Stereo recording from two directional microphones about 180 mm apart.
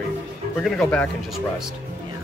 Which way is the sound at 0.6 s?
5° left (ahead or behind).